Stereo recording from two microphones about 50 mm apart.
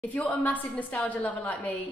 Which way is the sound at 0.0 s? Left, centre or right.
Left.